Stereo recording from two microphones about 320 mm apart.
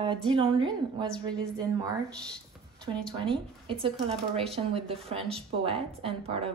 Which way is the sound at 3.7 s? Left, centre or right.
Centre.